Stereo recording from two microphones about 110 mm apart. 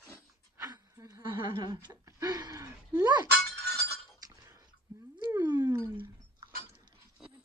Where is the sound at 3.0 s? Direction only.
40° right (ahead or behind).